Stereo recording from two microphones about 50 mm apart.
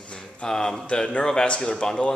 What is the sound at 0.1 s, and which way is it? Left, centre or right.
Speech, centre.